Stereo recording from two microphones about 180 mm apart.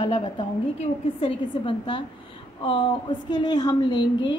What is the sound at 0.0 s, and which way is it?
A woman's voice, 30° left (ahead or behind).